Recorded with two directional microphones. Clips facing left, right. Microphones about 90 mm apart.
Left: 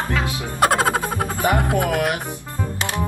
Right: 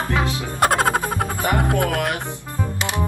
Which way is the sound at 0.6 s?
Centre (ahead or behind).